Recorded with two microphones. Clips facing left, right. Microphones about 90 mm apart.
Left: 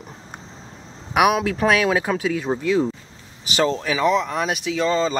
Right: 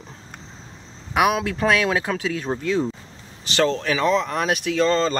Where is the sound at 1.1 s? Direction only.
10° left (ahead or behind).